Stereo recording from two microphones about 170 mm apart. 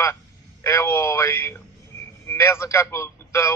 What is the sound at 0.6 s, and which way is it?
A man's voice, 15° left (ahead or behind).